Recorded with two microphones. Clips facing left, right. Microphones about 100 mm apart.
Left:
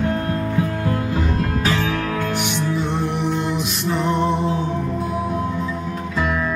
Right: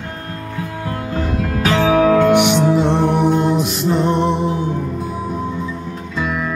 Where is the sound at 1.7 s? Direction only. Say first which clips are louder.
Right 14 dB; 90° right; by 3.7 s 45° right (ahead or behind).